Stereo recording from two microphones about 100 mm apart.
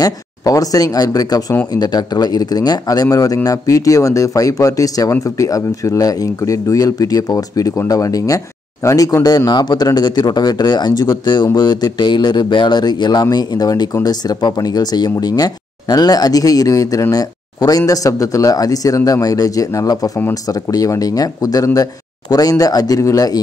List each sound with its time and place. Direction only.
0.0 s speech: 35° left (ahead or behind)